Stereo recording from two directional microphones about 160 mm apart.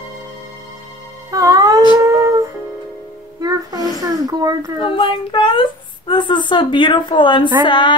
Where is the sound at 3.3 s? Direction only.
25° right (ahead or behind).